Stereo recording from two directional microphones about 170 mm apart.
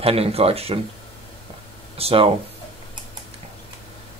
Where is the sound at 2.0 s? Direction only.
35° right (ahead or behind).